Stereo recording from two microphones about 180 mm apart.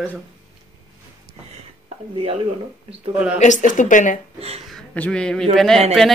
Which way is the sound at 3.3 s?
45° left (ahead or behind).